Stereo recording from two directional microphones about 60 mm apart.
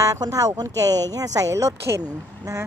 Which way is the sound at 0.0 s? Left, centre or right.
Right.